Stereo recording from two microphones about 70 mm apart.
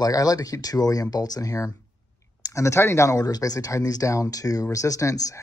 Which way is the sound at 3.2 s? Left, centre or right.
Left.